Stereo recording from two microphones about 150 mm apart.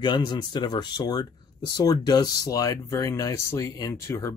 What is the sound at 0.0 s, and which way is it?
Speech, 30° left (ahead or behind).